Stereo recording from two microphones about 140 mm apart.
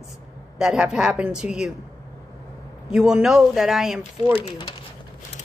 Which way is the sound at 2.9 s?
5° right (ahead or behind).